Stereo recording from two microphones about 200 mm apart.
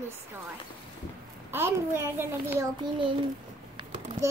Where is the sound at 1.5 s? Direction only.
10° right (ahead or behind).